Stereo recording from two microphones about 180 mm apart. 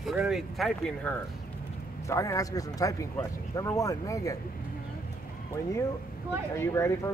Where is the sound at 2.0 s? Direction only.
15° left (ahead or behind).